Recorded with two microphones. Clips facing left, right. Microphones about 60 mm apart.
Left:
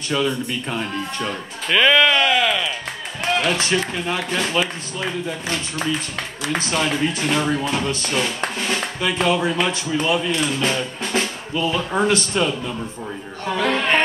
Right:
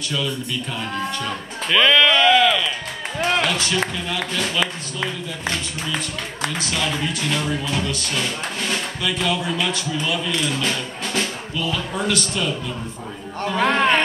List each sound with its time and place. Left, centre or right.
0.1 s speech: left
1.7 s speech: centre
3.4 s speech: left
6.6 s speech: left
13.6 s a sound: right